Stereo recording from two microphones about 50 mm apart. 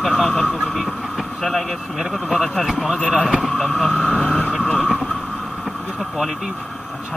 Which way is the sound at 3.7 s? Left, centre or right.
Centre.